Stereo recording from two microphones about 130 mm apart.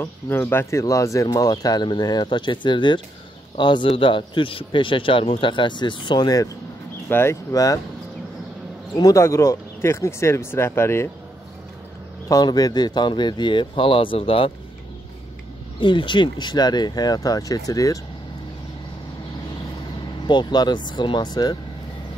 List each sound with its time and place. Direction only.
0.0 s speech: 15° left (ahead or behind)
8.9 s speech: 25° left (ahead or behind)
12.3 s speech: 30° left (ahead or behind)
15.8 s speech: 35° left (ahead or behind)
20.2 s speech: 35° left (ahead or behind)